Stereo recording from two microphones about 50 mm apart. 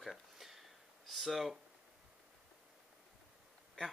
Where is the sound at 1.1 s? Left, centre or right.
Centre.